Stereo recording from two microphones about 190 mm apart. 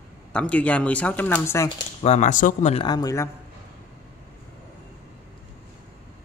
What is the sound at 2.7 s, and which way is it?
Speech, 20° left (ahead or behind).